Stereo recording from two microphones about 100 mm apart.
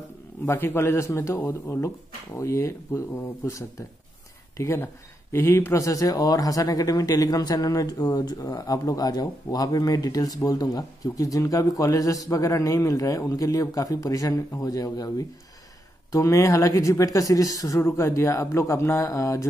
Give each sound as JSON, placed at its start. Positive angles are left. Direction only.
{"t": 0.5, "sound": "a man's voice", "side_deg": 25}